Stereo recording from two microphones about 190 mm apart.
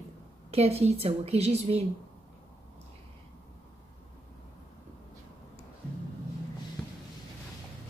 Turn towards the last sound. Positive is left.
turn(degrees=5)  # may be behind; listen again after turning